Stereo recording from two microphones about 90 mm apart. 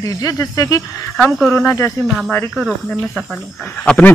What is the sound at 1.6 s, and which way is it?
Speech, 35° left (ahead or behind).